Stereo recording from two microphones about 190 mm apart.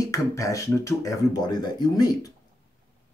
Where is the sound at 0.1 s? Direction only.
15° left (ahead or behind).